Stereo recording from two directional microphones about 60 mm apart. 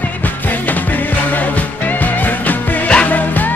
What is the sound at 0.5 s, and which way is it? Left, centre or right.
Music, left.